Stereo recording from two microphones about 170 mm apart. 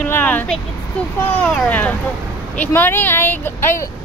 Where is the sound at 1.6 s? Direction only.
10° left (ahead or behind).